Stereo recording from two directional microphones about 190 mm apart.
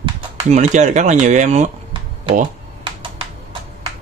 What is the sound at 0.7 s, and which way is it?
Speech, 40° right (ahead or behind).